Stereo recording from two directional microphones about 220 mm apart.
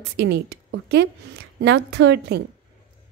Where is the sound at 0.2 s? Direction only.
50° right (ahead or behind).